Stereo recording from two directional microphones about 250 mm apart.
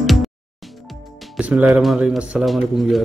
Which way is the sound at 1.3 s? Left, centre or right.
Centre.